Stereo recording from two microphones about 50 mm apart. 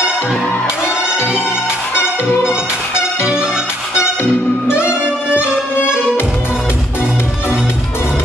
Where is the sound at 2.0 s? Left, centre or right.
Left.